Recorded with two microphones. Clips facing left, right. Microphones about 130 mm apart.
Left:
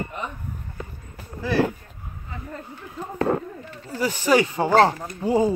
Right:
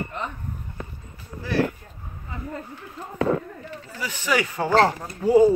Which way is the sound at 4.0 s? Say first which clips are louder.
Left 6 dB; 40° left (ahead or behind).